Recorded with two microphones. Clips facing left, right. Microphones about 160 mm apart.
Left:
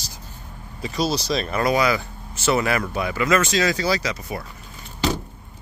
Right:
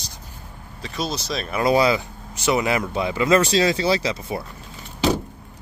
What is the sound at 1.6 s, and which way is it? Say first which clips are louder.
Speech: right 3 dB; 25° right (ahead or behind).